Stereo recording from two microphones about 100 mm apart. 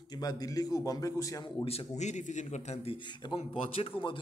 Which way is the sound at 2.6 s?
65° left (ahead or behind).